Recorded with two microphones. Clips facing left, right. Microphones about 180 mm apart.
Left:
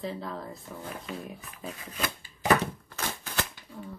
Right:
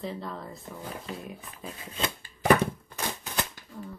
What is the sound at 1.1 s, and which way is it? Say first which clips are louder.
Speech: left 2 dB; 35° right (ahead or behind).